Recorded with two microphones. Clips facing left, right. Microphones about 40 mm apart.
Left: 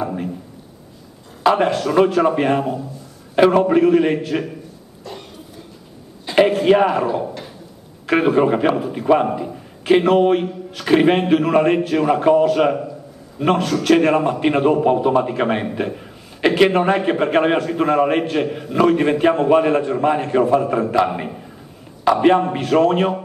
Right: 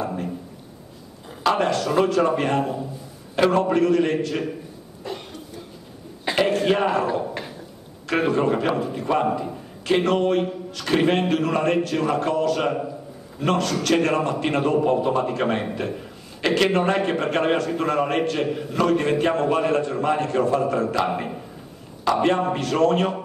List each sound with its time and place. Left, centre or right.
0.0 s a man's voice: centre
1.4 s a man's voice: centre
5.1 s cough: right
6.3 s a man's voice: centre
8.1 s a man's voice: centre